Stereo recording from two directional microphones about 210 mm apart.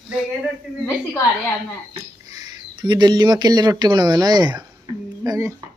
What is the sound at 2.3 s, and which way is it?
Speech, 20° right (ahead or behind).